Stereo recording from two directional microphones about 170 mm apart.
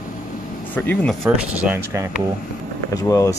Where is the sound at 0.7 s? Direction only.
10° left (ahead or behind).